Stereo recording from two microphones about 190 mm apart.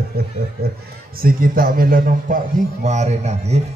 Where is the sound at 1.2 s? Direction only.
50° right (ahead or behind).